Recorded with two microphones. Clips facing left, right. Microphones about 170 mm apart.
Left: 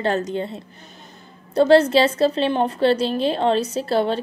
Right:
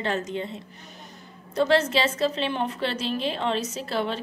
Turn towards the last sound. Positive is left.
turn(degrees=35)  # may be behind; listen again after turning